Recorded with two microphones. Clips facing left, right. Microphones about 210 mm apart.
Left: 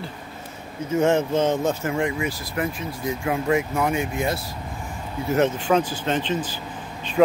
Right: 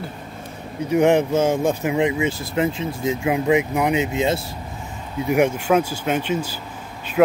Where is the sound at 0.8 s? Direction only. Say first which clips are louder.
Right 4 dB; 15° right (ahead or behind).